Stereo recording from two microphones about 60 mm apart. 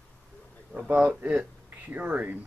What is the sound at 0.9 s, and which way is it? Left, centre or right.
Speech, right.